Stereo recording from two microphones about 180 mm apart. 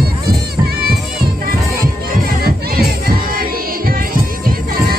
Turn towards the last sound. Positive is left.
turn(degrees=-55)  # may be behind; listen again after turning